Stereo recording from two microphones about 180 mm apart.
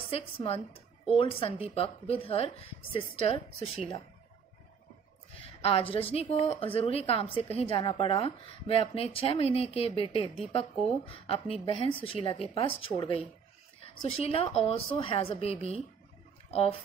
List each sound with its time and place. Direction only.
0.1 s a woman's voice: 30° left (ahead or behind)
5.6 s a woman's voice: 30° left (ahead or behind)